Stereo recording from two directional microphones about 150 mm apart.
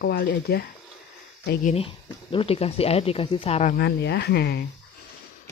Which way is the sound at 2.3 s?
40° left (ahead or behind).